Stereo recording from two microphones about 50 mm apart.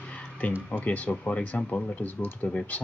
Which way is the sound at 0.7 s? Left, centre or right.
Left.